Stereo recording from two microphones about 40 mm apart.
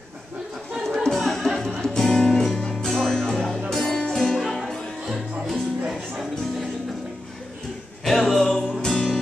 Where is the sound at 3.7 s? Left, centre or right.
Centre.